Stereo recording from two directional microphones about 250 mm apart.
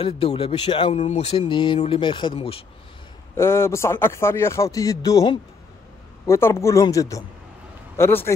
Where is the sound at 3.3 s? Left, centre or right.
Centre.